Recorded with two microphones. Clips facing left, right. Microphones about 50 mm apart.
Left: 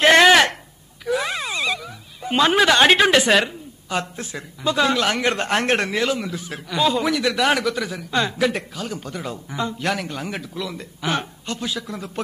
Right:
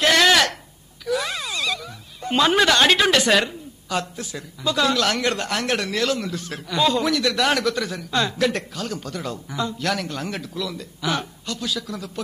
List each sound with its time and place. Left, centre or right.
0.0 s a sound: left
4.0 s speech: left
4.7 s speech: centre
5.9 s a man's voice: centre